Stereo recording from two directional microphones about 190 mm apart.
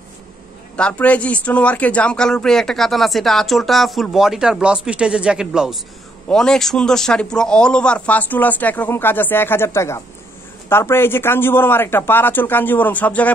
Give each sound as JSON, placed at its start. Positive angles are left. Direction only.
{"t": 0.7, "sound": "a man's voice", "side_deg": 5}